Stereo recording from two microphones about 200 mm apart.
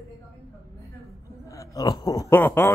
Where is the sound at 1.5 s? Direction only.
15° left (ahead or behind).